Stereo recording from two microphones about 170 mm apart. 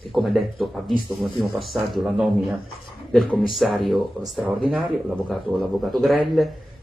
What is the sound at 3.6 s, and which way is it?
Speech, centre (ahead or behind).